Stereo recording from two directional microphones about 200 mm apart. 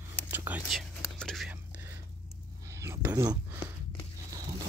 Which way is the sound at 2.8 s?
10° right (ahead or behind).